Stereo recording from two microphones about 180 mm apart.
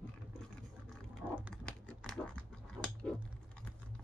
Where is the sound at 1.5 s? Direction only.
5° left (ahead or behind).